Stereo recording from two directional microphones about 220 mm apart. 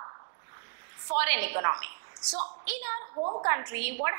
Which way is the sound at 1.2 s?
10° right (ahead or behind).